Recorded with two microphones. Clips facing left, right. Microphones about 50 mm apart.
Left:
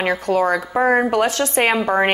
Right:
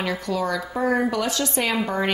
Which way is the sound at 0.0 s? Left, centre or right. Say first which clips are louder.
Left 7 dB; left.